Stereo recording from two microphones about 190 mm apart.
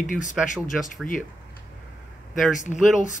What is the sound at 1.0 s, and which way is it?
Speech, 45° left (ahead or behind).